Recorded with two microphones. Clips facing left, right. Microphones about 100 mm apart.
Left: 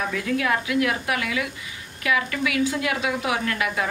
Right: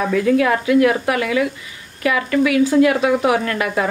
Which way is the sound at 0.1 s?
45° right (ahead or behind).